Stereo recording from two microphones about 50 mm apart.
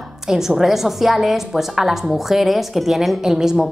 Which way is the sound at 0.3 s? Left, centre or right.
Centre.